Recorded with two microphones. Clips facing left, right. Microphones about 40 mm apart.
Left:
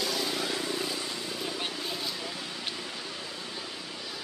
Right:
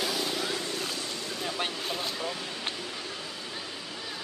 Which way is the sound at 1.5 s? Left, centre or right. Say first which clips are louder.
Right 2 dB; right.